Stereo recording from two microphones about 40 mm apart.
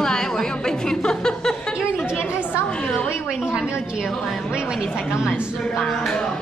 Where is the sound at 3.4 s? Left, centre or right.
Right.